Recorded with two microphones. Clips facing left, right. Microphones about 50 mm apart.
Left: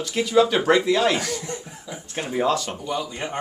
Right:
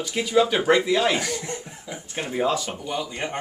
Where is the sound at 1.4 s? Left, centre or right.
Right.